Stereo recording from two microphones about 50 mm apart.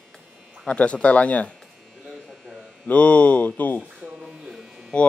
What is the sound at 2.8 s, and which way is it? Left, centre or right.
Speech, left.